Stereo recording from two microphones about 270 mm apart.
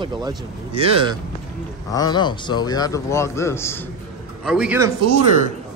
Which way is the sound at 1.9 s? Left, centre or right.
Centre.